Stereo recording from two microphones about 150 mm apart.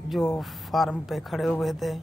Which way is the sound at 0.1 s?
Centre (ahead or behind).